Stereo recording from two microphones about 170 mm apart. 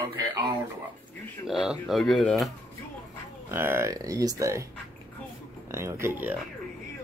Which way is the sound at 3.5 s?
15° right (ahead or behind).